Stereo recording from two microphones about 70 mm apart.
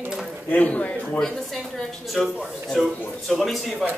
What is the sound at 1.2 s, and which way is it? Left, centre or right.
Speech, centre.